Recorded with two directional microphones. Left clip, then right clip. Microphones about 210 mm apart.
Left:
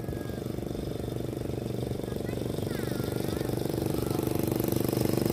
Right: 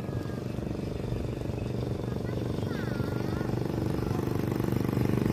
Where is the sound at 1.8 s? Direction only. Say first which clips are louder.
Left 1 dB; 50° left (ahead or behind).